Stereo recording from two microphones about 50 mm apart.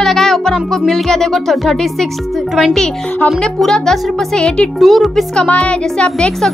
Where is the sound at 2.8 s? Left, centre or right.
Centre.